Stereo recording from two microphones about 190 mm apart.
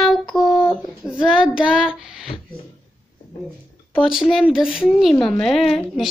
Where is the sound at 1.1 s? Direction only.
5° right (ahead or behind).